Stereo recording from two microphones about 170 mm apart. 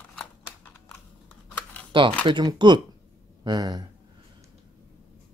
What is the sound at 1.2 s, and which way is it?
Computer keyboard, 10° left (ahead or behind).